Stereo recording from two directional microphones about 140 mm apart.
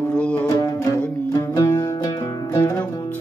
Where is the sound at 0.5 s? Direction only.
25° left (ahead or behind).